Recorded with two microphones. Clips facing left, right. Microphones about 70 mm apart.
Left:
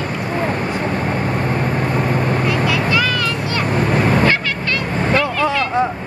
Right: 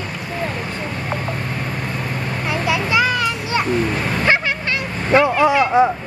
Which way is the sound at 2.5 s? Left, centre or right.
Right.